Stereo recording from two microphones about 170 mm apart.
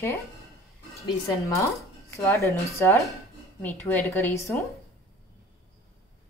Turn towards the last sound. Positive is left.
turn(degrees=15)  # may be behind; listen again after turning